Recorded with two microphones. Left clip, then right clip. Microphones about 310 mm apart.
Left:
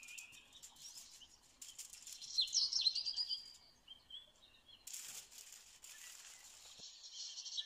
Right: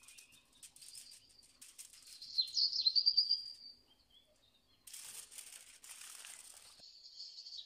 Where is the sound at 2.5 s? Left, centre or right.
Left.